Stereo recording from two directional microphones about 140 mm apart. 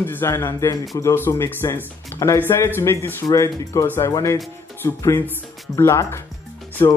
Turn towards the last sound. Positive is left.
turn(degrees=20)  # may be behind; listen again after turning